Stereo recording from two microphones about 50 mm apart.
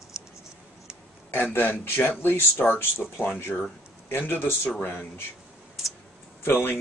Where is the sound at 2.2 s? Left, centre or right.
Left.